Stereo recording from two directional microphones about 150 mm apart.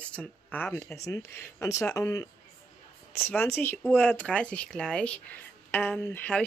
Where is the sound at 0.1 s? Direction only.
10° left (ahead or behind).